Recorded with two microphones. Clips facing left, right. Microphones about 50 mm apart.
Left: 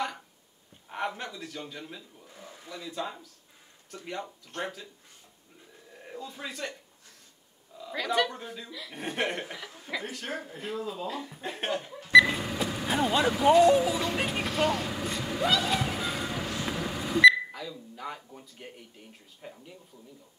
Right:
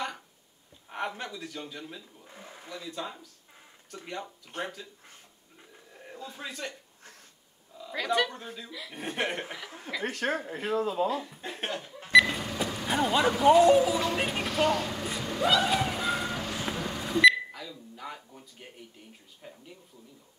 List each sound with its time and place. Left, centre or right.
0.8 s a man's voice: centre
2.2 s a sound: right
2.7 s speech: centre
5.9 s a sound: centre
6.4 s speech: centre
7.7 s a man's voice: centre
10.0 s speech: right
11.1 s speech: centre
15.4 s a sound: centre
19.4 s speech: centre